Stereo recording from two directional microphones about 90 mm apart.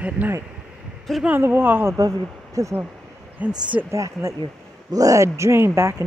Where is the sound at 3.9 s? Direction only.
35° right (ahead or behind).